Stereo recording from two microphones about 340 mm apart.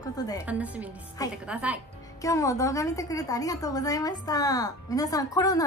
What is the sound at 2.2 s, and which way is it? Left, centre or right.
A woman's voice, centre.